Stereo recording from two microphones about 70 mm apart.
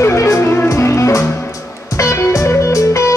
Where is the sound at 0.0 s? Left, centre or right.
Left.